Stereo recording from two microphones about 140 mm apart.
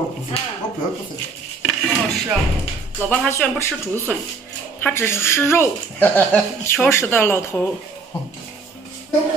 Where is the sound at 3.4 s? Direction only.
10° left (ahead or behind).